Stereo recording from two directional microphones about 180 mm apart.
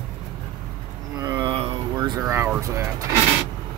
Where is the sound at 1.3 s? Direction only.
25° right (ahead or behind).